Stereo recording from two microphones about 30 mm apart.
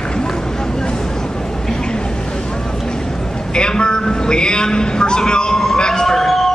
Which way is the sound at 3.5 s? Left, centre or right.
Left.